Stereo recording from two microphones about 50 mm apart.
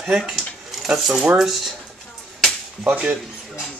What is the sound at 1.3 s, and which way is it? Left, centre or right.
Speech, centre.